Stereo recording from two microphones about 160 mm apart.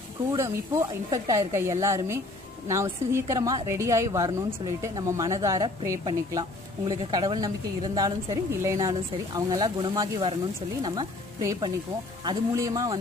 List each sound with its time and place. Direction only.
0.3 s a woman's voice: 15° right (ahead or behind)